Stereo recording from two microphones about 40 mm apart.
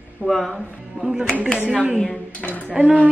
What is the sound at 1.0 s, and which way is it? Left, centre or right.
Speech, left.